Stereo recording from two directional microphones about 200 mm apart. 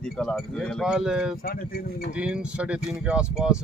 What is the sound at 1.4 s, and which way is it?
Speech, 50° left (ahead or behind).